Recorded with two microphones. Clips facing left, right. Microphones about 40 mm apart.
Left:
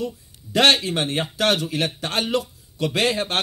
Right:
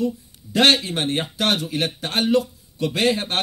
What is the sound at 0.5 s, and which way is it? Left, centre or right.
A man's voice, left.